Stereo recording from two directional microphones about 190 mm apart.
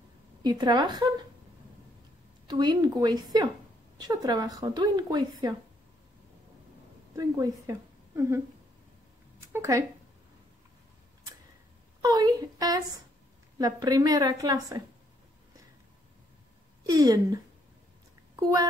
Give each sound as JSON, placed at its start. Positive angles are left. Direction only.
{"t": 0.4, "sound": "a woman's voice", "side_deg": -25}
{"t": 2.4, "sound": "a woman's voice", "side_deg": -20}
{"t": 7.2, "sound": "a woman's voice", "side_deg": -20}
{"t": 9.5, "sound": "speech", "side_deg": -15}
{"t": 12.0, "sound": "a woman's voice", "side_deg": -20}
{"t": 16.8, "sound": "a woman's voice", "side_deg": -20}